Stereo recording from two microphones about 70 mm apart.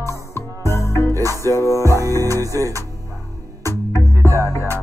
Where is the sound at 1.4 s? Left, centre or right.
Right.